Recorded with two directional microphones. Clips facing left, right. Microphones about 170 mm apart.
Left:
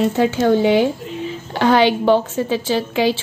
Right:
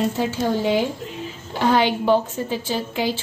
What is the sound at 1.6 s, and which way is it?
A woman's voice, 85° left.